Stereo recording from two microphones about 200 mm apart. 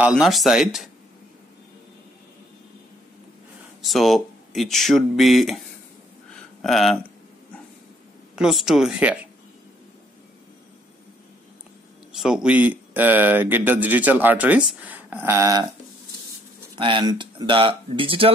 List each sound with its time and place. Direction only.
0.0 s speech: 5° right (ahead or behind)
3.8 s speech: centre (ahead or behind)
6.6 s speech: centre (ahead or behind)
8.4 s speech: centre (ahead or behind)
12.1 s speech: 5° right (ahead or behind)
16.7 s speech: 25° right (ahead or behind)